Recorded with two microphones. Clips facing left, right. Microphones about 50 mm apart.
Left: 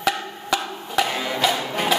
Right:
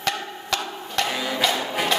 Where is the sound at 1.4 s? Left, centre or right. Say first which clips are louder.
Left 1 dB; centre.